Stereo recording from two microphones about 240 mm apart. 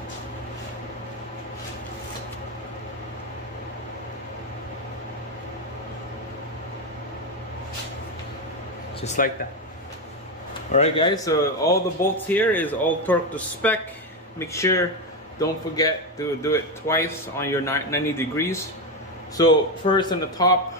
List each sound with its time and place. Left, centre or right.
9.0 s speech: left
10.7 s speech: left